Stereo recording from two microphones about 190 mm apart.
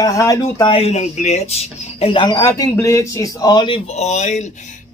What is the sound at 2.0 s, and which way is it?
A man's voice, 25° left (ahead or behind).